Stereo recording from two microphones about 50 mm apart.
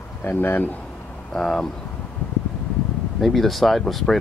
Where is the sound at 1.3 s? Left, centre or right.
Centre.